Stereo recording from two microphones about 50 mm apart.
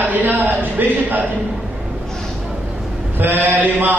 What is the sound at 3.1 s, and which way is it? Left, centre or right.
Speech, right.